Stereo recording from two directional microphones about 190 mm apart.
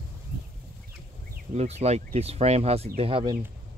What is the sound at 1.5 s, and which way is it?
Speech, 35° right (ahead or behind).